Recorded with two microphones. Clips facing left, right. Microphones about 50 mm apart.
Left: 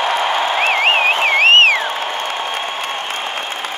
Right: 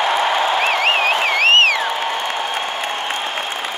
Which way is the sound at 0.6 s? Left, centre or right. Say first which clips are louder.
Left 2 dB; left.